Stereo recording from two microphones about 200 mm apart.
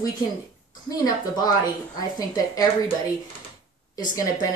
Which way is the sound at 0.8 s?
20° left (ahead or behind).